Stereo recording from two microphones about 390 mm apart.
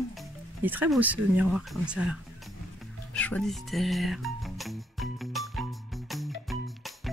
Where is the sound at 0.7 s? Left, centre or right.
Centre.